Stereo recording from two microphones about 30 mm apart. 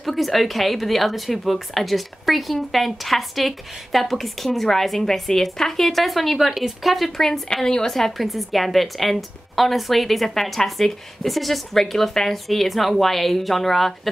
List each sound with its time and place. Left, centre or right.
0.0 s speech: centre
6.3 s speech: centre
6.8 s speech: centre
7.1 s a woman's voice: centre
8.2 s speech: centre